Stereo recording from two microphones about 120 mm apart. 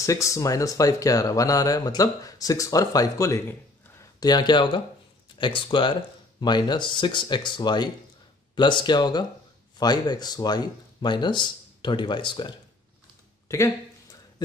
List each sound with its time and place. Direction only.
0.0 s speech: 25° left (ahead or behind)